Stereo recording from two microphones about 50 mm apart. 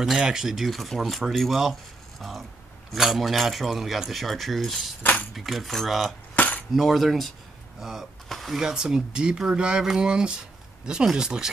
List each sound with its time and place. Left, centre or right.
0.2 s speech: centre
6.3 s cutlery: left
6.7 s speech: centre
8.3 s a sound: centre
8.5 s speech: centre